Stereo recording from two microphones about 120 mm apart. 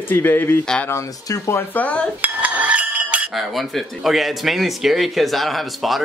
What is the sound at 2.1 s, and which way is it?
Cutlery, 15° right (ahead or behind).